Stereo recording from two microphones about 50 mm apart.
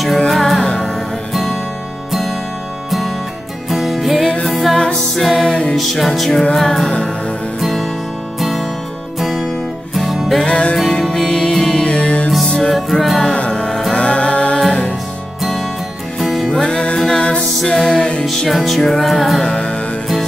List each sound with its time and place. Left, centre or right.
0.3 s music: centre
3.6 s music: centre
4.7 s music: centre
5.4 s music: centre
5.8 s music: centre
6.9 s music: centre
7.6 s music: centre
10.4 s music: centre
12.4 s music: centre
13.3 s music: centre
15.4 s music: centre
16.5 s music: centre
18.2 s music: centre
19.4 s music: centre